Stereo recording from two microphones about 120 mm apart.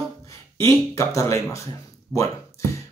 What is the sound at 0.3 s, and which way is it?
Speech, 25° left (ahead or behind).